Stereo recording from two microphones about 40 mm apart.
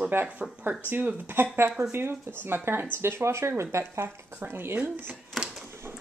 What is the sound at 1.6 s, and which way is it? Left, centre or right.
Speech, right.